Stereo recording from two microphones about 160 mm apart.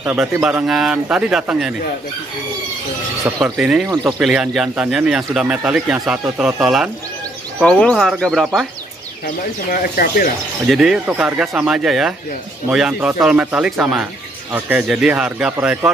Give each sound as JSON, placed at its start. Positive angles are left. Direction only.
{"t": 0.0, "sound": "a man's voice", "side_deg": -10}
{"t": 3.3, "sound": "a man's voice", "side_deg": -15}
{"t": 3.5, "sound": "speech", "side_deg": -5}
{"t": 9.2, "sound": "speech", "side_deg": 65}
{"t": 10.7, "sound": "a man's voice", "side_deg": 0}